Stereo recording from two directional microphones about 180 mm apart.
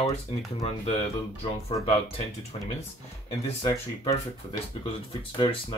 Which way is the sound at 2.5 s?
35° left (ahead or behind).